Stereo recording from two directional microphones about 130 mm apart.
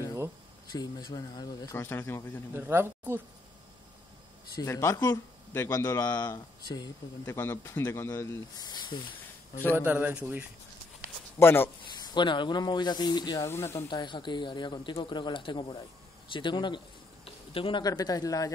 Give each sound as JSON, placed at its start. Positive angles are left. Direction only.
{"t": 0.7, "sound": "speech", "side_deg": 30}
{"t": 1.8, "sound": "speech", "side_deg": 20}
{"t": 2.5, "sound": "speech", "side_deg": -15}
{"t": 4.6, "sound": "speech", "side_deg": 20}
{"t": 9.8, "sound": "speech", "side_deg": -15}
{"t": 11.3, "sound": "speech", "side_deg": 20}
{"t": 12.0, "sound": "speech", "side_deg": 35}
{"t": 13.5, "sound": "speech", "side_deg": 20}
{"t": 13.8, "sound": "speech", "side_deg": 35}